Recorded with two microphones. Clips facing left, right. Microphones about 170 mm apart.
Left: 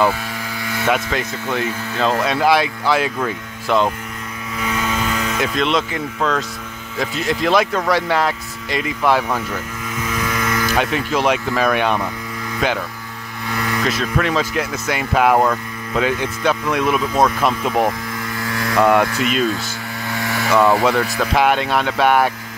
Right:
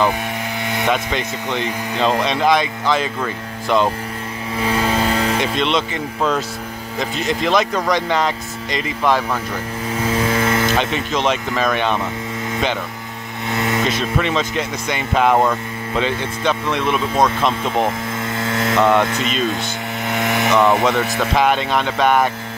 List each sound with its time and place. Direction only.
0.7 s a sound: 20° right (ahead or behind)
0.9 s speech: 5° left (ahead or behind)
4.6 s vehicle: 30° right (ahead or behind)
5.6 s speech: centre (ahead or behind)
7.0 s speech: 5° left (ahead or behind)
9.8 s mechanisms: 30° right (ahead or behind)
10.8 s speech: 10° left (ahead or behind)
13.5 s vehicle: 20° right (ahead or behind)
13.8 s speech: centre (ahead or behind)
17.8 s vehicle: 25° right (ahead or behind)
18.8 s speech: 10° left (ahead or behind)
19.0 s speech: 20° right (ahead or behind)
20.1 s mains hum: 20° right (ahead or behind)
21.2 s speech: 5° left (ahead or behind)